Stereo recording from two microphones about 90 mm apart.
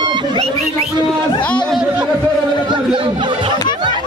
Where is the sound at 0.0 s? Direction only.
55° right (ahead or behind).